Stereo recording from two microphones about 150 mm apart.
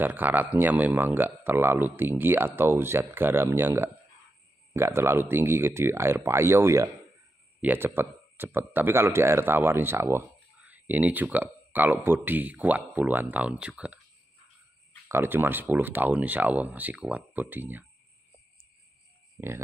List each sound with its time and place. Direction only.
0.0 s speech: 15° right (ahead or behind)
15.0 s speech: 15° right (ahead or behind)